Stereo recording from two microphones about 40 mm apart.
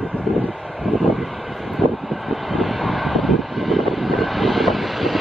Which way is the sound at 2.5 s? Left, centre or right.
Centre.